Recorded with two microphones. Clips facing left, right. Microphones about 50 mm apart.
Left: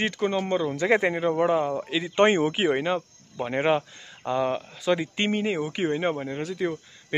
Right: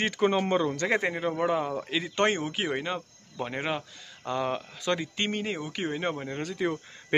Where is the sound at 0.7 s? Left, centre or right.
Centre.